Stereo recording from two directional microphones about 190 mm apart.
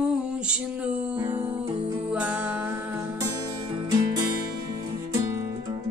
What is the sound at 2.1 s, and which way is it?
Music, 5° right (ahead or behind).